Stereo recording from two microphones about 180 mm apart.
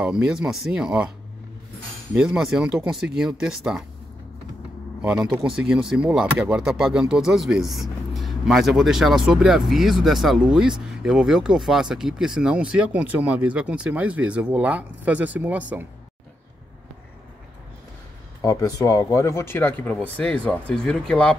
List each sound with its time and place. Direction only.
0.0 s speech: 5° right (ahead or behind)
2.1 s speech: 5° right (ahead or behind)
5.0 s speech: 5° right (ahead or behind)
18.4 s speech: 15° left (ahead or behind)